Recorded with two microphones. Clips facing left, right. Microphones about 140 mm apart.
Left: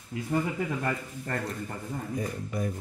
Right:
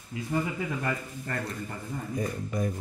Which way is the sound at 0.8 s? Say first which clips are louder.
Left 1 dB; 35° left (ahead or behind).